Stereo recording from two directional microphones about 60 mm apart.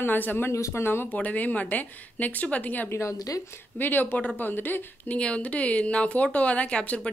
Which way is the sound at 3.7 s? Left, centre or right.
Left.